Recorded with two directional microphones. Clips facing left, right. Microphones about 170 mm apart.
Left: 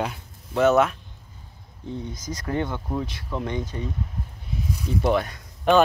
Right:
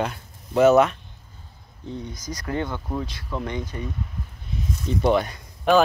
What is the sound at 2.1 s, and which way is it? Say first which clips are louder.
Speech: left 1 dB; 25° left (ahead or behind).